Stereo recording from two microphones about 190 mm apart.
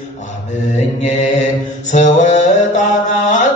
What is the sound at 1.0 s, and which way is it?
Mantra, 40° left (ahead or behind).